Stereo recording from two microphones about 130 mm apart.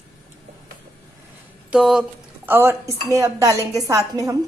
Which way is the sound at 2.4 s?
15° right (ahead or behind).